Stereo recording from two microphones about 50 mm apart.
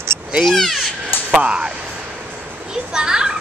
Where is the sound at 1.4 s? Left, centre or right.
Centre.